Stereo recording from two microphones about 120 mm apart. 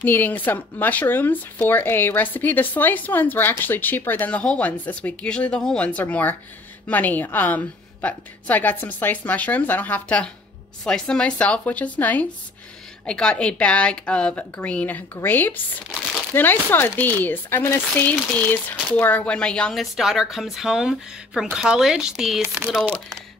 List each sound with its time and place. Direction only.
0.0 s speech: 15° left (ahead or behind); by 22.9 s centre (ahead or behind)